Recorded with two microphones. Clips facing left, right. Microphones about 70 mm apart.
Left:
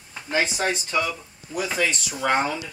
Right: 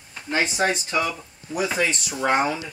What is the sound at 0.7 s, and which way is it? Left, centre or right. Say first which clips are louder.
Speech: right 1 dB; right.